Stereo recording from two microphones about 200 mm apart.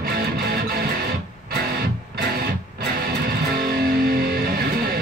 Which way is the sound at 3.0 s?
50° right (ahead or behind).